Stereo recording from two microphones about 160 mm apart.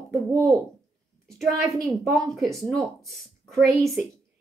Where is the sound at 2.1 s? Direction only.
Centre (ahead or behind).